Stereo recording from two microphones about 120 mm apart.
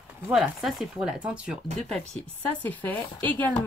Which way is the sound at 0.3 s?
Centre (ahead or behind).